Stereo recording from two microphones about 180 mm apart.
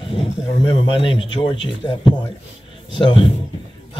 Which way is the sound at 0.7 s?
30° left (ahead or behind).